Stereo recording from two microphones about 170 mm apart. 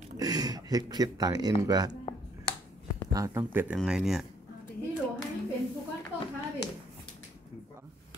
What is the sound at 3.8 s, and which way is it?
Speech, centre (ahead or behind).